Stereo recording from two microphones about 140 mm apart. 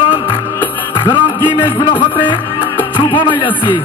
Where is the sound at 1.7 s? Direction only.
35° left (ahead or behind).